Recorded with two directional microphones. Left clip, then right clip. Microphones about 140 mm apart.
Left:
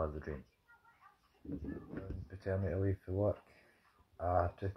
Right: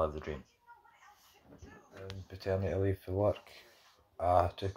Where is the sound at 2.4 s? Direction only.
10° right (ahead or behind).